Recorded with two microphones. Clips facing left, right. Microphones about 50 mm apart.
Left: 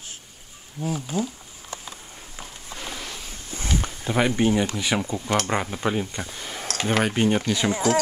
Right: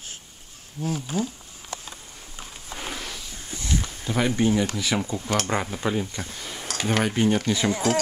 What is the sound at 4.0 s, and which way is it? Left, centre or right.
Speech, centre.